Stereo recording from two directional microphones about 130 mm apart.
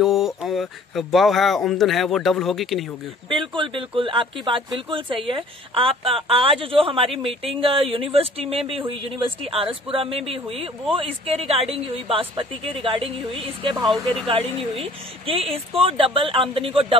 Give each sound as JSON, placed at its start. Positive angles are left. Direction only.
{"t": 0.0, "sound": "speech", "side_deg": 0}
{"t": 3.3, "sound": "speech", "side_deg": -40}
{"t": 13.8, "sound": "speech", "side_deg": 0}
{"t": 15.7, "sound": "speech", "side_deg": -45}